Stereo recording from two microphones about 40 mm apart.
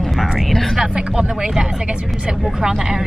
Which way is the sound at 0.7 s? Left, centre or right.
Centre.